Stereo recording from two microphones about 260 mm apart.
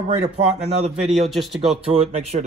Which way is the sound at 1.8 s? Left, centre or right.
Right.